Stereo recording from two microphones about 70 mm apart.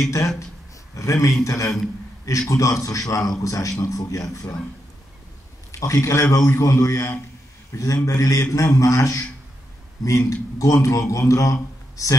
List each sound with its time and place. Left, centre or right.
0.9 s a man's voice: left
5.7 s a man's voice: left